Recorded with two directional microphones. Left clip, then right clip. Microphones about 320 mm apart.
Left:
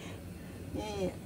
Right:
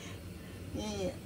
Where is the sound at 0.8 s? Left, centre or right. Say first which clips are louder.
Left 2 dB; centre.